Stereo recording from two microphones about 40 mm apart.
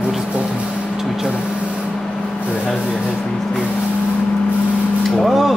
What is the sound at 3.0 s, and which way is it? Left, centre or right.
Speech, centre.